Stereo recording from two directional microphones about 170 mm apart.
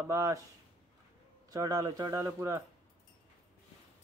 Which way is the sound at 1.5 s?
20° right (ahead or behind).